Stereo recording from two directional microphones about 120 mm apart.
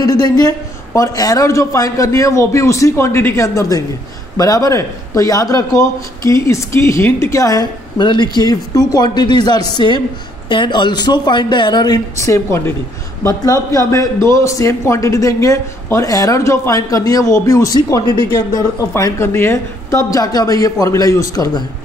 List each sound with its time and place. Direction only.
0.0 s a man's voice: 35° left (ahead or behind)
13.7 s a man's voice: 25° left (ahead or behind)